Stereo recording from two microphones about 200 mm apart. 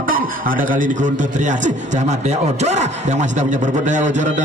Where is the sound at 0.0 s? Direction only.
45° right (ahead or behind).